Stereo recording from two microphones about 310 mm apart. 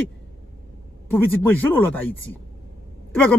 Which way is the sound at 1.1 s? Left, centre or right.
Centre.